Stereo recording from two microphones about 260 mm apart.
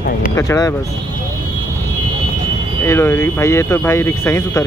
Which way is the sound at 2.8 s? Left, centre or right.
Centre.